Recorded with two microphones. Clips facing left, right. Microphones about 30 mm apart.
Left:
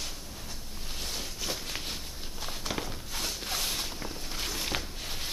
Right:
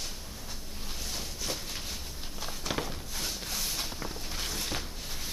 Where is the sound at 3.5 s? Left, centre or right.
Left.